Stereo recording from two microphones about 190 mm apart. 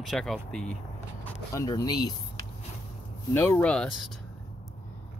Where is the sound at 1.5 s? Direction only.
20° left (ahead or behind).